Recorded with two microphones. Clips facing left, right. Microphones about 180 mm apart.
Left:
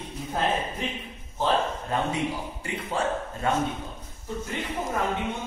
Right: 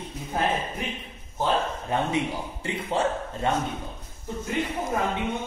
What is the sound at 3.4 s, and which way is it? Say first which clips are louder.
Speech: right 1 dB; 25° right (ahead or behind).